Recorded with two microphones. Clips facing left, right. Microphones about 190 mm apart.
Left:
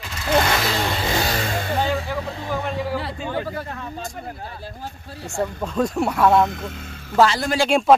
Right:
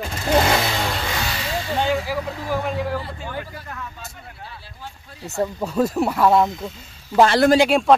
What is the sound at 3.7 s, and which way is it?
Speech, 30° left (ahead or behind).